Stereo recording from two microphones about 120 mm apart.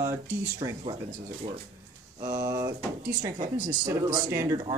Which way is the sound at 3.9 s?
25° right (ahead or behind).